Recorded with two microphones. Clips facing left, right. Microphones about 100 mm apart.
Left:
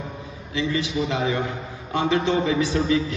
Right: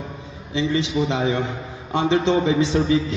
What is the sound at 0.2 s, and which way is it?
A man's voice, 25° right (ahead or behind).